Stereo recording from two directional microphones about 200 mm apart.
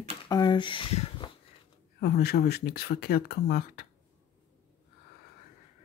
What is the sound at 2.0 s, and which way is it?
Speech, 50° left (ahead or behind).